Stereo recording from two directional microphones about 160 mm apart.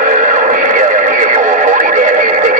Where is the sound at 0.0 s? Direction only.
55° right (ahead or behind).